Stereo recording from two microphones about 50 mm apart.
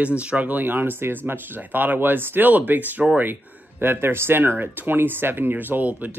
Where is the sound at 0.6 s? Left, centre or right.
Right.